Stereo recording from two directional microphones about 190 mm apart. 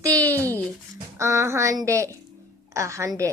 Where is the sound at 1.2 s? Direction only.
15° right (ahead or behind).